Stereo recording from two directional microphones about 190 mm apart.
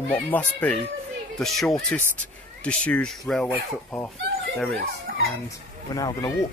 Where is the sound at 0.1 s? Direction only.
10° left (ahead or behind).